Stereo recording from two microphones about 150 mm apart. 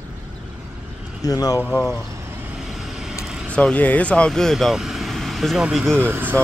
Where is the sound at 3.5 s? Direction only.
10° left (ahead or behind).